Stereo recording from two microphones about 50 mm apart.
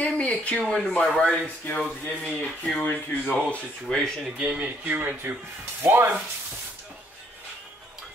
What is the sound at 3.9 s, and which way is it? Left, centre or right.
Speech, centre.